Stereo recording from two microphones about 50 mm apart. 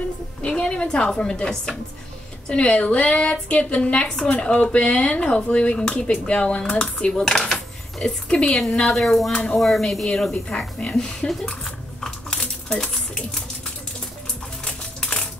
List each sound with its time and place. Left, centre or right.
0.4 s a woman's voice: centre
8.0 s speech: left
8.5 s a woman's voice: centre
9.3 s speech: left
9.6 s a woman's voice: centre
10.8 s speech: left
11.4 s a sound: centre
14.6 s a sound: centre